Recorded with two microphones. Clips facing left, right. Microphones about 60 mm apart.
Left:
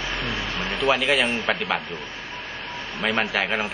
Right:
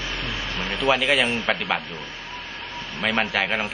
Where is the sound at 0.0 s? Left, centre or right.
Left.